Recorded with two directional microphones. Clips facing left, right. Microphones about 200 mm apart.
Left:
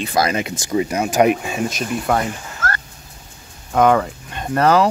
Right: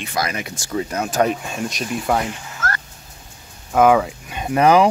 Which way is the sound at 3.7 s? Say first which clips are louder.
Right 1 dB; 5° right (ahead or behind).